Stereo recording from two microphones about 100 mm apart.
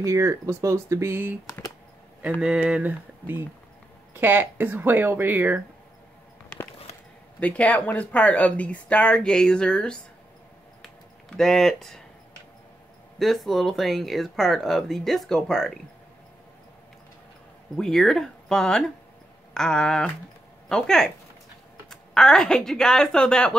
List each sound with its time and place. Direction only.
0.0 s speech: 30° right (ahead or behind)
2.4 s speech: 10° right (ahead or behind)
7.3 s speech: 15° left (ahead or behind)
10.8 s a sound: 5° left (ahead or behind)
13.2 s speech: centre (ahead or behind)
17.7 s speech: centre (ahead or behind)